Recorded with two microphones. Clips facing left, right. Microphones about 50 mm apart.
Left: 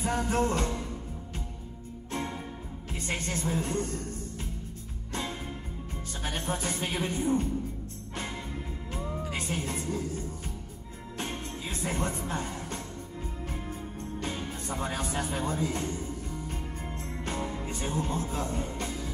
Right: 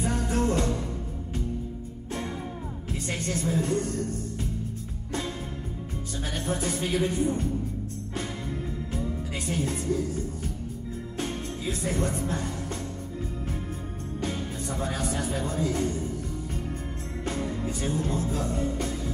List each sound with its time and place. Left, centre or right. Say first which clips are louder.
0.1 s music: left 1 dB; left
3.1 s speech: right 2 dB; left
6.2 s speech: right 2 dB; left
8.9 s music: even; left
11.1 s music: right 2 dB; left
14.3 s music: right 3 dB; left
15.1 s speech: right 1 dB; left
17.2 s music: right 3 dB; left
17.7 s speech: right 1 dB; left